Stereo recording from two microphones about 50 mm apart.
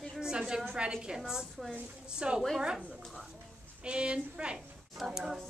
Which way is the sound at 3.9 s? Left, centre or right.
Right.